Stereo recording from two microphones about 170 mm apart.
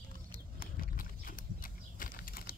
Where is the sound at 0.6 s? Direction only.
55° left (ahead or behind).